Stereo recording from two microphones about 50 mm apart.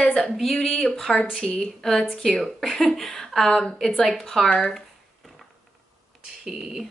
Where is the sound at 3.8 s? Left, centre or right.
Centre.